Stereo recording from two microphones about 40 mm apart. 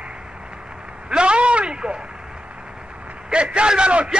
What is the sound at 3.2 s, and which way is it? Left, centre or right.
Speech, right.